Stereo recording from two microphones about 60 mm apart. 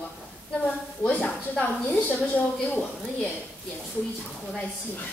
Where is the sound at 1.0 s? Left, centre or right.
Left.